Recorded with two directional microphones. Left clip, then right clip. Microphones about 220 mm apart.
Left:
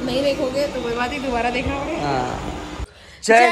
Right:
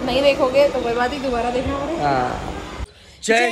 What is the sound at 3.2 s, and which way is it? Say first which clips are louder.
Speech: left 4 dB; 5° right (ahead or behind).